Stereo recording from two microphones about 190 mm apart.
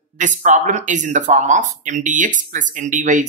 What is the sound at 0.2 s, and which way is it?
Speech, 40° right (ahead or behind).